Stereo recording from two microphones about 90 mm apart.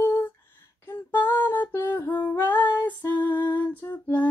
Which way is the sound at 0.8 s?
20° left (ahead or behind).